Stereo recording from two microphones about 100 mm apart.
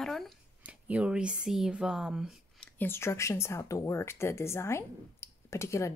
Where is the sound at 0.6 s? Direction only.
15° right (ahead or behind).